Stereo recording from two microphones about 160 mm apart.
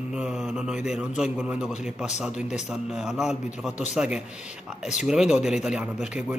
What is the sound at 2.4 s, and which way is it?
Speech, 45° left (ahead or behind).